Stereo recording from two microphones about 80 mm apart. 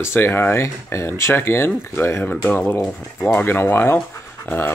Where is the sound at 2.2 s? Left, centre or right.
Centre.